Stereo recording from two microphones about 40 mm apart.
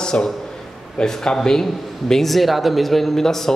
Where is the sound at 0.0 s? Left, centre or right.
Left.